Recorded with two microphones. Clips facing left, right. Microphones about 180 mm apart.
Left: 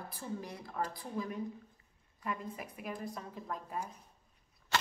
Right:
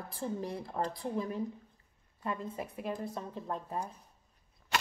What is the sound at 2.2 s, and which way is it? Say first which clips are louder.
A woman's voice: right 3 dB; 30° right (ahead or behind).